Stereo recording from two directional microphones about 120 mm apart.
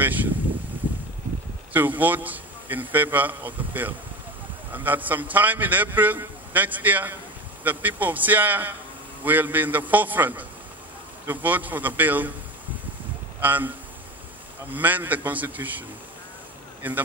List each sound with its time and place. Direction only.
0.0 s a sound: 15° right (ahead or behind)
1.7 s a man's voice: 15° right (ahead or behind)
13.4 s a man's voice: 15° right (ahead or behind)
14.7 s a man's voice: 15° right (ahead or behind)
16.8 s a man's voice: 15° right (ahead or behind)